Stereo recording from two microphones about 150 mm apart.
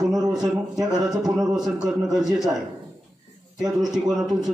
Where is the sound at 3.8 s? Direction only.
Centre (ahead or behind).